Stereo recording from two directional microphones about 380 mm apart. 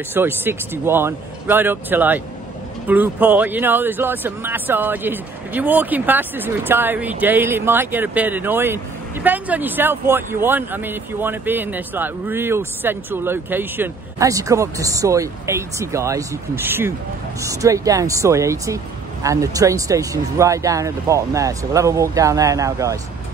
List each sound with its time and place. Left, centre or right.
0.1 s speech: centre